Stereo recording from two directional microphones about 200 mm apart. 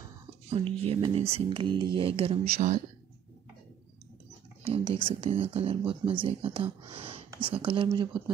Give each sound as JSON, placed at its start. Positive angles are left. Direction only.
{"t": 0.5, "sound": "speech", "side_deg": -30}
{"t": 4.6, "sound": "speech", "side_deg": -25}